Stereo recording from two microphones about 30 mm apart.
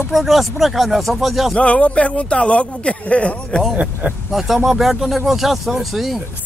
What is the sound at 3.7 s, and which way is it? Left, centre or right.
Speech, right.